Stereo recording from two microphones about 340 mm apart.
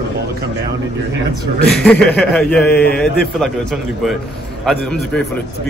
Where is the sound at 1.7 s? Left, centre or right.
Centre.